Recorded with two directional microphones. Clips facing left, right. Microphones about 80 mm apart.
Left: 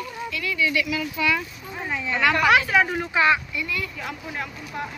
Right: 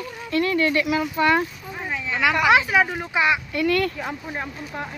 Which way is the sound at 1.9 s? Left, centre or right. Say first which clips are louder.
Even; centre.